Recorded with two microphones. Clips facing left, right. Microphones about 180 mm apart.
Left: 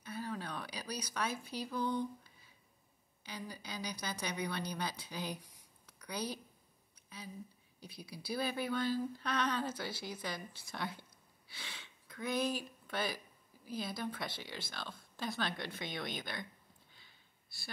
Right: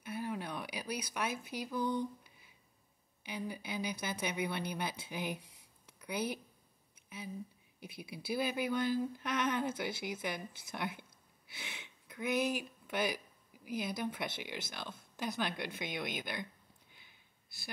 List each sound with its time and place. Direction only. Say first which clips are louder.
0.0 s a sound: right 2 dB; 15° right (ahead or behind)
3.3 s speech: right 5 dB; 20° right (ahead or behind)
7.8 s speech: right 3 dB; 20° right (ahead or behind)
16.9 s sniff: right 1 dB; 15° right (ahead or behind)